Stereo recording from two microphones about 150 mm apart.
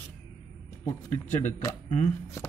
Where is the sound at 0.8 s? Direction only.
15° left (ahead or behind).